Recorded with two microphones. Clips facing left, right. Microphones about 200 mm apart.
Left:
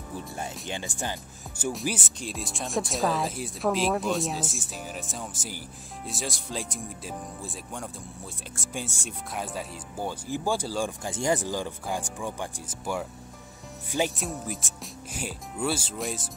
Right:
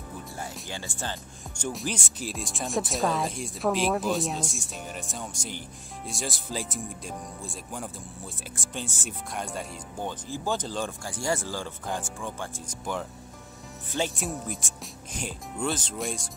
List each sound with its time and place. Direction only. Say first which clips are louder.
0.4 s speech: left 2 dB; 20° left (ahead or behind)
1.6 s speech: left 2 dB; 5° left (ahead or behind)
11.1 s speech: left 4 dB; 20° left (ahead or behind)
14.1 s speech: even; centre (ahead or behind)